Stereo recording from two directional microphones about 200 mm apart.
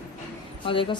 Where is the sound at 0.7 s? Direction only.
25° left (ahead or behind).